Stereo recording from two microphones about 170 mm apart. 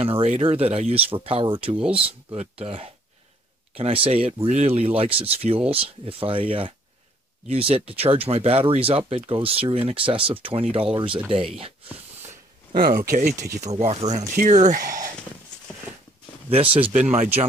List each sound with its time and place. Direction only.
0.0 s speech: 35° right (ahead or behind)
1.8 s speech: 5° right (ahead or behind)
2.6 s speech: 35° right (ahead or behind)
12.7 s speech: 60° right (ahead or behind)
13.6 s speech: 40° right (ahead or behind)
16.4 s speech: 35° right (ahead or behind)